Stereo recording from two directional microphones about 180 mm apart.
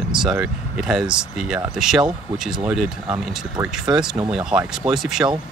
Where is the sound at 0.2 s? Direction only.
5° right (ahead or behind).